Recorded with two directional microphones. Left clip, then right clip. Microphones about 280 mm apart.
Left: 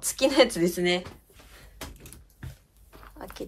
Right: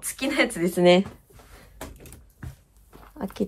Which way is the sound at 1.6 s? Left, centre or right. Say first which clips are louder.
Right 2 dB; centre.